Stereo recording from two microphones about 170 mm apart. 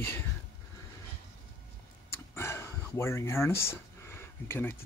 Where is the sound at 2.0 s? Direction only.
15° left (ahead or behind).